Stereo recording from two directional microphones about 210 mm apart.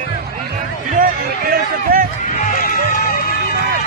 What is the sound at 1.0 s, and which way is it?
Speech, 45° right (ahead or behind).